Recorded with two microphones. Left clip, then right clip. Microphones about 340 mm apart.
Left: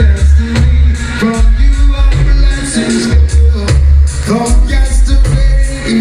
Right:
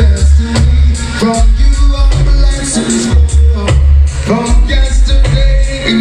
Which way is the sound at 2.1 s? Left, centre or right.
Centre.